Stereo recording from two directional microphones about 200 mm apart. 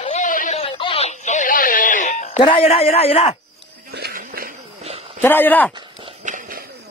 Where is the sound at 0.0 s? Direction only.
35° left (ahead or behind).